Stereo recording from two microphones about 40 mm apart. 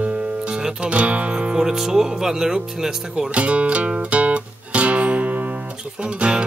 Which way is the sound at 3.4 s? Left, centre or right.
Right.